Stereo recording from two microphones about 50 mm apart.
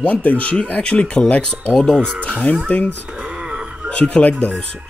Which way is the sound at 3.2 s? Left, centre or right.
Right.